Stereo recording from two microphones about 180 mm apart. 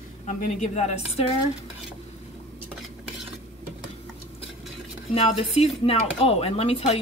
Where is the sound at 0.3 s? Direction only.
40° left (ahead or behind).